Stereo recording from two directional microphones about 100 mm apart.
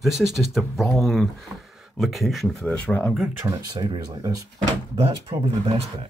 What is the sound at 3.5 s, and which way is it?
Speech, 50° right (ahead or behind).